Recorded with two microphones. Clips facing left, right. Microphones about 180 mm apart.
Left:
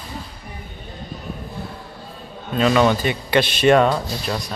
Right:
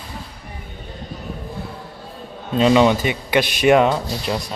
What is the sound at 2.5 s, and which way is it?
Speech, 20° right (ahead or behind).